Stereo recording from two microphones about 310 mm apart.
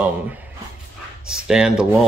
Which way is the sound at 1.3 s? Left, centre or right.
Centre.